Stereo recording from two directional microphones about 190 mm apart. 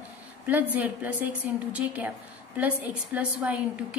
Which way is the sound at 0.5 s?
10° right (ahead or behind).